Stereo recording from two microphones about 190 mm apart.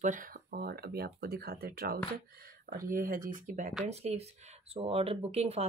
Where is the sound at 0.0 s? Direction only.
45° right (ahead or behind).